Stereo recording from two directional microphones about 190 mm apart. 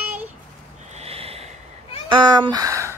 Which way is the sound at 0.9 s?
30° right (ahead or behind).